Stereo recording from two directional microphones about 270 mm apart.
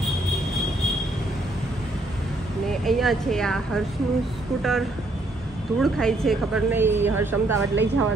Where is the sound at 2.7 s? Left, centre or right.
Centre.